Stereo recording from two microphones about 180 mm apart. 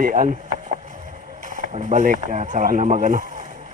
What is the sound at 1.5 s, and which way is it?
Speech, 40° right (ahead or behind).